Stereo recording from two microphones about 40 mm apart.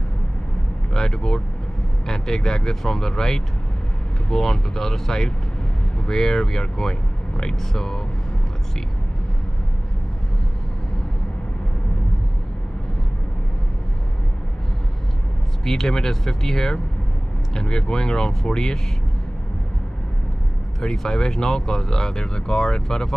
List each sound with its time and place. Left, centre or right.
0.9 s speech: centre
15.6 s speech: centre
20.8 s speech: centre